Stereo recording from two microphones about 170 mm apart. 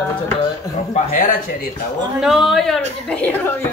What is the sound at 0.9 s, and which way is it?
Speech, 50° left (ahead or behind).